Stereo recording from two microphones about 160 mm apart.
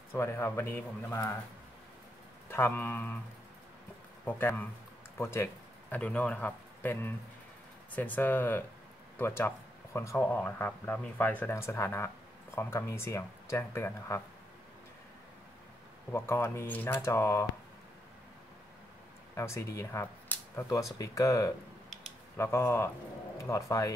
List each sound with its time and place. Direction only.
0.1 s speech: 15° left (ahead or behind)
2.5 s speech: 15° left (ahead or behind)
4.2 s a man's voice: 10° left (ahead or behind)
16.1 s speech: 15° left (ahead or behind)
19.3 s speech: 20° left (ahead or behind)